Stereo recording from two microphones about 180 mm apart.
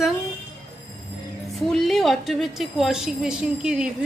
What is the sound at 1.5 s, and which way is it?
A woman's voice, centre (ahead or behind).